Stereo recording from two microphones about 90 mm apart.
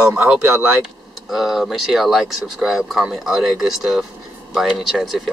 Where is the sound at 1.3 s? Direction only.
5° right (ahead or behind).